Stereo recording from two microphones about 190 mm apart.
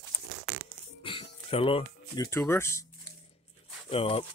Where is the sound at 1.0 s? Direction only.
25° left (ahead or behind).